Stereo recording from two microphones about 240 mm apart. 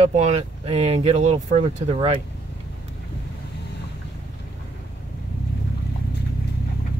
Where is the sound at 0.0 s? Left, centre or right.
Right.